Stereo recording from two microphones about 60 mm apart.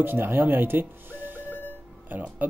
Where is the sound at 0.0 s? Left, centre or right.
Right.